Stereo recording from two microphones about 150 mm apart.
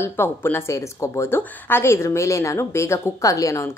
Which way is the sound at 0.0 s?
15° left (ahead or behind).